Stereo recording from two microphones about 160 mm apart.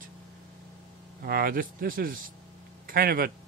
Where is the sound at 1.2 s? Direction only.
70° right (ahead or behind).